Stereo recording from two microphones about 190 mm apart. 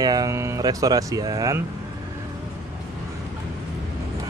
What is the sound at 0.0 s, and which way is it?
Speech, 20° right (ahead or behind).